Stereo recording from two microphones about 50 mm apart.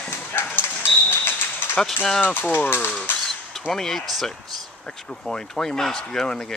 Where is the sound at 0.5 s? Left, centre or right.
Left.